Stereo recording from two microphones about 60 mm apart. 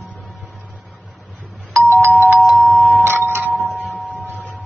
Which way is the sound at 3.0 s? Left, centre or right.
Right.